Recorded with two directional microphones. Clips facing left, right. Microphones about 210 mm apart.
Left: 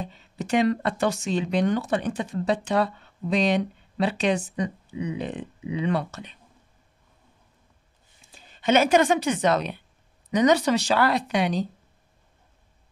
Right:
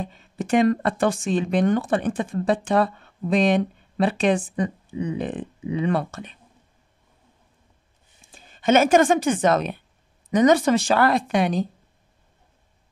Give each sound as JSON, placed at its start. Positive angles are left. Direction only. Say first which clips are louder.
{"t": 0.0, "sound": "speech", "louder": "right 3 dB", "side_deg": -50}
{"t": 8.3, "sound": "speech", "louder": "right 3 dB", "side_deg": -50}